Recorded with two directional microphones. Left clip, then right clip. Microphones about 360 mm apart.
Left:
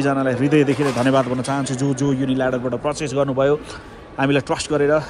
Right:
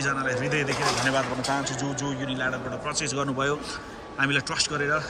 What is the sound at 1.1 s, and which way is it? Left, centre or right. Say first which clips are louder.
Speech: left 6 dB; left.